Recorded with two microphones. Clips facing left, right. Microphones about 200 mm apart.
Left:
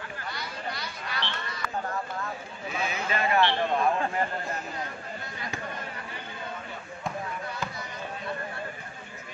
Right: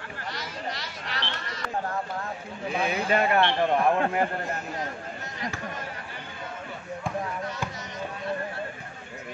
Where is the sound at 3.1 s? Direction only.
55° right (ahead or behind).